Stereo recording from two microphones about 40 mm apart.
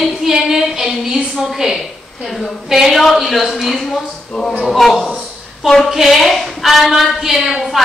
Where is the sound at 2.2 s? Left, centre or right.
Centre.